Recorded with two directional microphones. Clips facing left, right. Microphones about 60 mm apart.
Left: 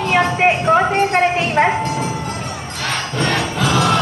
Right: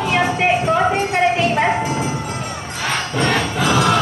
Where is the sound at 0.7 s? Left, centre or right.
Left.